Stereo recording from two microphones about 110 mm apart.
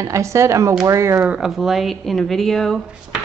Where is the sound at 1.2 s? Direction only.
10° right (ahead or behind).